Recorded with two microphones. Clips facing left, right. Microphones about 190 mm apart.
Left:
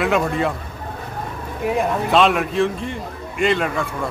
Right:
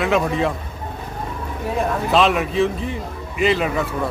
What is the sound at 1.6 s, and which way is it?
Speech, 15° left (ahead or behind).